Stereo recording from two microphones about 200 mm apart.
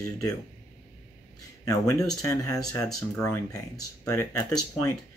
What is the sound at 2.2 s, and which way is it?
Speech, 15° left (ahead or behind).